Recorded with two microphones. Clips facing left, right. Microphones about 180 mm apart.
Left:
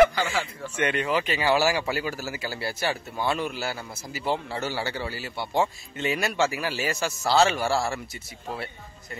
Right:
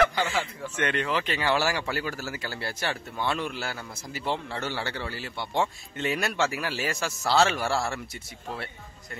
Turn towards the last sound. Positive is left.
turn(degrees=0)  # may be behind; listen again after turning